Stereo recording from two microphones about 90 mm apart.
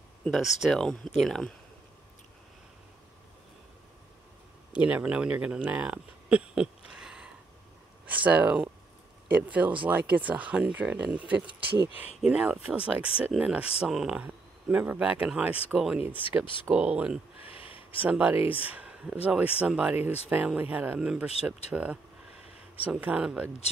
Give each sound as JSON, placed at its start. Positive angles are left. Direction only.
{"t": 0.3, "sound": "speech", "side_deg": 0}
{"t": 4.7, "sound": "speech", "side_deg": -15}
{"t": 16.1, "sound": "speech", "side_deg": -20}
{"t": 17.5, "sound": "a sound", "side_deg": 90}
{"t": 18.0, "sound": "speech", "side_deg": -15}